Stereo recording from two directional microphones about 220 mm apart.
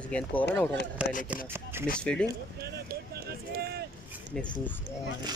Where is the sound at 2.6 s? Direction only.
45° right (ahead or behind).